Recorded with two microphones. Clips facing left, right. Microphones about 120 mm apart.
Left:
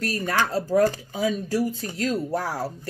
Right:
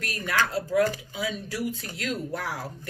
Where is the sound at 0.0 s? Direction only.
35° left (ahead or behind).